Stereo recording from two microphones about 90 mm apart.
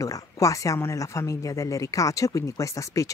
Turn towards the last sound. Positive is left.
turn(degrees=35)  # may be behind; listen again after turning